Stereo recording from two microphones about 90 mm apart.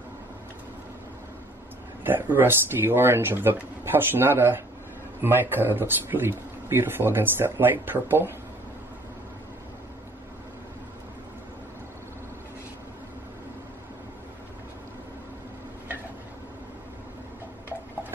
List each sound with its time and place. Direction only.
2.0 s speech: 20° right (ahead or behind)